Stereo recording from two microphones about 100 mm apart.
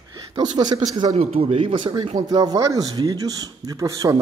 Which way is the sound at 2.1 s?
40° right (ahead or behind).